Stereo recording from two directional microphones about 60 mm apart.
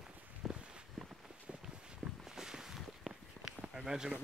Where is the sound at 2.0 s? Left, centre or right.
Centre.